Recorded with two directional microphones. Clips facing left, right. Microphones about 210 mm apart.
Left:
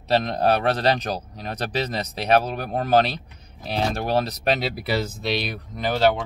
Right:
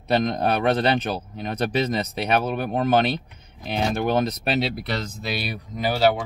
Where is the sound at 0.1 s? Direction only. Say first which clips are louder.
Left 1 dB; 30° left (ahead or behind).